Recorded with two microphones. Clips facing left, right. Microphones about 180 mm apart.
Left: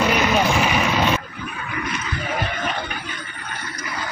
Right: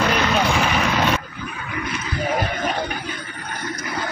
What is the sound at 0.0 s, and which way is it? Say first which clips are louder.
Vehicle: left 1 dB; 5° left (ahead or behind).